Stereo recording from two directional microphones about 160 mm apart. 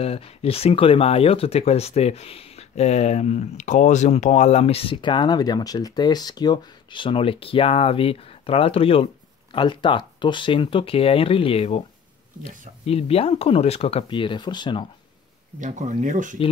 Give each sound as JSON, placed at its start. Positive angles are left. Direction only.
{"t": 0.0, "sound": "speech", "side_deg": 40}
{"t": 15.6, "sound": "speech", "side_deg": -50}